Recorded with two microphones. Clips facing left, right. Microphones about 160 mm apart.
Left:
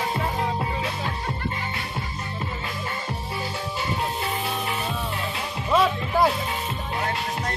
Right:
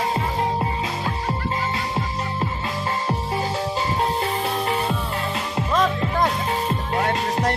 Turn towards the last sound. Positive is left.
turn(degrees=-65)  # may be behind; listen again after turning